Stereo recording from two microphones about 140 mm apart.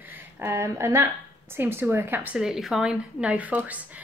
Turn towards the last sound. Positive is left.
turn(degrees=-10)  # may be behind; listen again after turning